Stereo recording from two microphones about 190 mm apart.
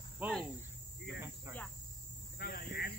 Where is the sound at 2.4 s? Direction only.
55° left (ahead or behind).